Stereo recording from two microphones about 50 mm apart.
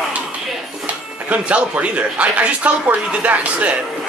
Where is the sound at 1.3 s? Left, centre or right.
Right.